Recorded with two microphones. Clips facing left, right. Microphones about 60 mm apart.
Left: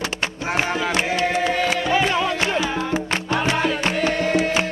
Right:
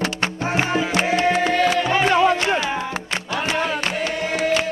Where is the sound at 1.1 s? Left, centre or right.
Right.